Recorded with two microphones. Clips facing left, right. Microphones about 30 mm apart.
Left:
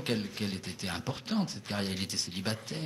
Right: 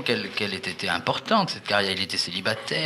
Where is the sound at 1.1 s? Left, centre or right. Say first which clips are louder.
Right 11 dB; right.